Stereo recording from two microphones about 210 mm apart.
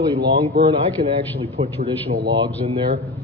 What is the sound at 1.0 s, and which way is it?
Speech, 30° right (ahead or behind).